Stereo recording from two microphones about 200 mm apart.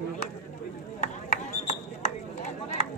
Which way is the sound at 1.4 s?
35° left (ahead or behind).